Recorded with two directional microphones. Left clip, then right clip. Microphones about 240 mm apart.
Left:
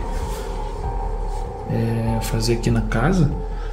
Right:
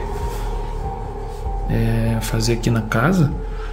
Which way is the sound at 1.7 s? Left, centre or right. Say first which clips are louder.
Right 1 dB; centre.